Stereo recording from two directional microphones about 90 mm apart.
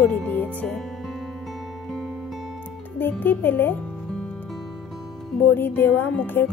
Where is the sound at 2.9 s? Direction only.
20° left (ahead or behind).